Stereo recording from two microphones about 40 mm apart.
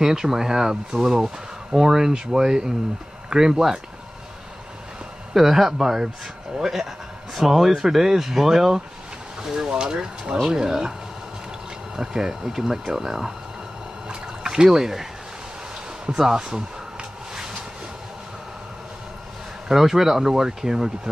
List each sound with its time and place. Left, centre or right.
0.0 s speech: centre
5.3 s speech: centre
9.4 s speech: centre
12.0 s speech: centre
14.0 s a sound: centre
16.1 s speech: centre
19.7 s speech: centre